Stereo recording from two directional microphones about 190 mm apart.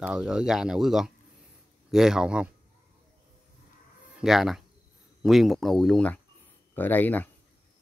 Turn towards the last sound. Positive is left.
turn(degrees=10)  # may be behind; listen again after turning